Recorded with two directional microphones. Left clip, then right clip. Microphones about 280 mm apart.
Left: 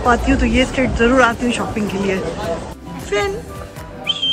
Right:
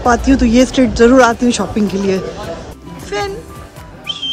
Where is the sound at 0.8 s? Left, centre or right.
Centre.